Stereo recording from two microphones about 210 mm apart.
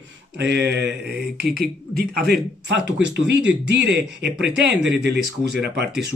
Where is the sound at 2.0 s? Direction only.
50° right (ahead or behind).